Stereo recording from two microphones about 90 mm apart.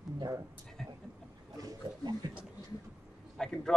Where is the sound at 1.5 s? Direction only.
45° right (ahead or behind).